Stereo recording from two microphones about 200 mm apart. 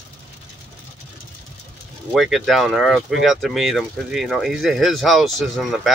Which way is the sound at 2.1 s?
Centre (ahead or behind).